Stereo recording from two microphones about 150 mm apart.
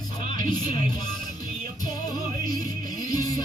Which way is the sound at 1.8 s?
30° left (ahead or behind).